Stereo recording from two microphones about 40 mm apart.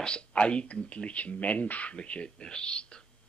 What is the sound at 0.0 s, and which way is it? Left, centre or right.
Speech, left.